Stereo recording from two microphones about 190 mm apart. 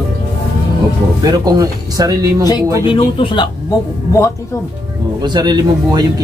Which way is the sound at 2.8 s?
25° left (ahead or behind).